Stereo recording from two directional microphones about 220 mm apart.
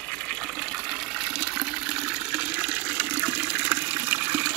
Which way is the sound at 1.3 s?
Centre (ahead or behind).